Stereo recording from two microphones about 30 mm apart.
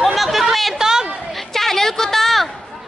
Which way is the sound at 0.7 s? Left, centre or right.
Centre.